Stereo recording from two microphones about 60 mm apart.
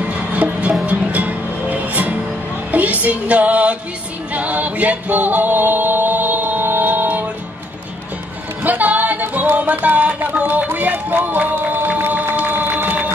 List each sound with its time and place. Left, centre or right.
0.0 s music: right
8.6 s music: right